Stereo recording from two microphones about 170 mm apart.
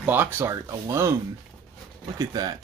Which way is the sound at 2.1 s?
20° right (ahead or behind).